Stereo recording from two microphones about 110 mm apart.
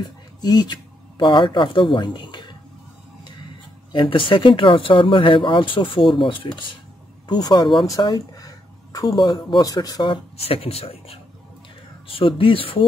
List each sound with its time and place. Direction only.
0.4 s speech: 40° left (ahead or behind)
3.9 s speech: 50° left (ahead or behind)
7.2 s speech: 40° left (ahead or behind)
7.8 s a sound: 35° left (ahead or behind)
9.2 s speech: 40° left (ahead or behind)
10.3 s speech: 65° left (ahead or behind)
12.1 s speech: 55° left (ahead or behind)